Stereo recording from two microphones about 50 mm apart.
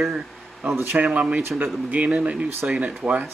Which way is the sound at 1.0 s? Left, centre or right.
Right.